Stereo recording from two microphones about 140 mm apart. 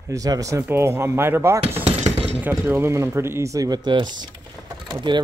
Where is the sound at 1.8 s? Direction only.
50° right (ahead or behind).